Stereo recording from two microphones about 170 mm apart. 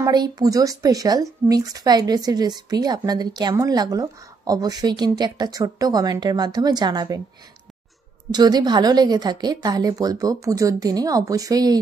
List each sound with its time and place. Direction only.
0.0 s a woman's voice: 20° right (ahead or behind)
8.3 s a woman's voice: 25° right (ahead or behind)